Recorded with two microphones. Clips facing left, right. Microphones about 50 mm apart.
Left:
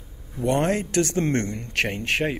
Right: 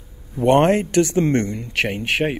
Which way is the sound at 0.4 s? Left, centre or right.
Right.